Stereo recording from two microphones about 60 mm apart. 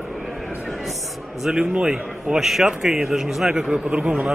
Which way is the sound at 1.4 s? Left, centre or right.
Centre.